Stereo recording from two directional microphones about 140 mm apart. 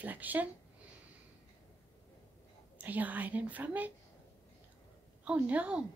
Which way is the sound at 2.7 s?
10° right (ahead or behind).